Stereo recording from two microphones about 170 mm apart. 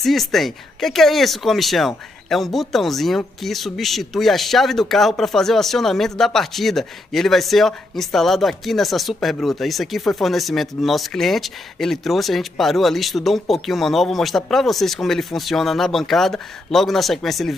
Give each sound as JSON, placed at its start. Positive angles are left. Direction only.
{"t": 0.0, "sound": "speech", "side_deg": 0}